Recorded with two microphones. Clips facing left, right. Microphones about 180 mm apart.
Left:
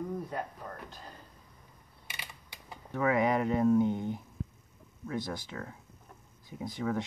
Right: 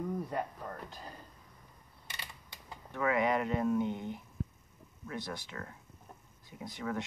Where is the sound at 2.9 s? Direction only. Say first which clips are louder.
Left 3 dB; 35° left (ahead or behind).